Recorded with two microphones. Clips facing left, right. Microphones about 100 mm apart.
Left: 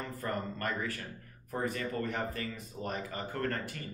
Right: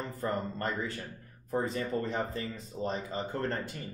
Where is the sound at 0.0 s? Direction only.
25° right (ahead or behind).